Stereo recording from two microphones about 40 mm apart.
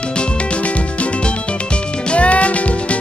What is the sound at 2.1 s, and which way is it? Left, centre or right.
Music, left.